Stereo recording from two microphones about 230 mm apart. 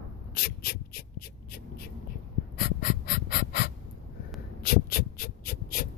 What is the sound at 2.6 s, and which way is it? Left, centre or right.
Gasp, left.